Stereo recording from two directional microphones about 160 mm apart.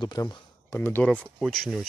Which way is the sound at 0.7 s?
10° left (ahead or behind).